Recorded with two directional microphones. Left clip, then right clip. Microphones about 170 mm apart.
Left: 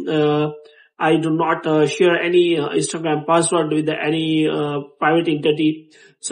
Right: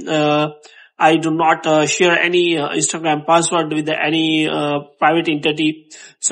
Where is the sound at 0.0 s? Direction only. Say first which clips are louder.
Right 2 dB; 30° right (ahead or behind).